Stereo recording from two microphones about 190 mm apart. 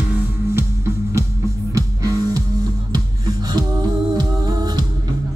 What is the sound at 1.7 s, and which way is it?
Music, 15° right (ahead or behind).